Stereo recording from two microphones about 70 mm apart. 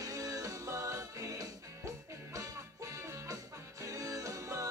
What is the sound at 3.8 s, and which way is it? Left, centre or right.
Music, right.